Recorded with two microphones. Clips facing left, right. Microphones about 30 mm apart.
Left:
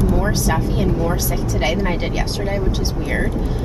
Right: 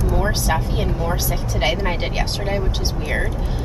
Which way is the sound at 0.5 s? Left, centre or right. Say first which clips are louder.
Left 4 dB; centre.